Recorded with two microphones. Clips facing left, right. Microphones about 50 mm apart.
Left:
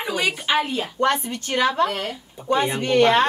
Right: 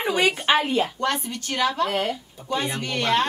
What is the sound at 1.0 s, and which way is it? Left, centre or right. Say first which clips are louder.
Speech: left 4 dB; left.